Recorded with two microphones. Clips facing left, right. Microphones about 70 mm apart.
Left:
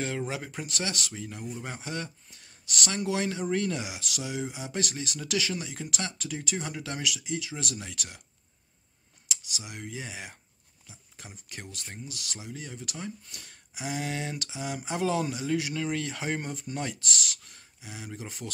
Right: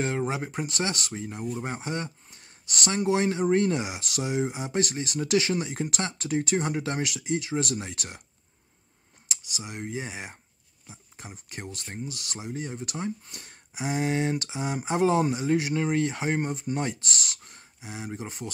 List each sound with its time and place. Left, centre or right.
0.0 s speech: right
9.3 s speech: right